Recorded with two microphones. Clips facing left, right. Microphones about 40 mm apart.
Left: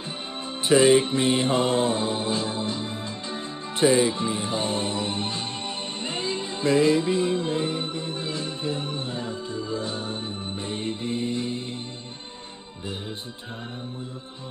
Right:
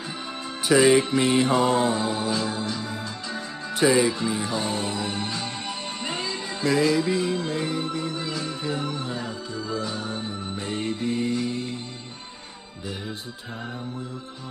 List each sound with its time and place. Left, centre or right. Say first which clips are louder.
0.7 s mantra: even; left
6.0 s music: left 1 dB; left